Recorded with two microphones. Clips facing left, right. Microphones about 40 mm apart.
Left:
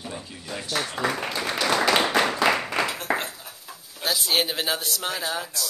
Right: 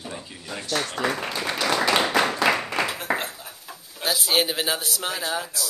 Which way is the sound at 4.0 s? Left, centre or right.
Centre.